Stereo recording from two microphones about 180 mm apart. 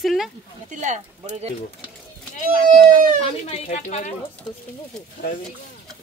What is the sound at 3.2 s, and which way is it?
Speech, 35° left (ahead or behind).